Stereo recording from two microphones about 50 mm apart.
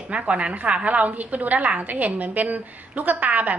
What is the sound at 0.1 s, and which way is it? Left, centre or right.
A woman's voice, right.